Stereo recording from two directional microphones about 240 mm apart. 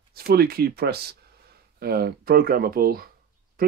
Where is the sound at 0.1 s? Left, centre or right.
Right.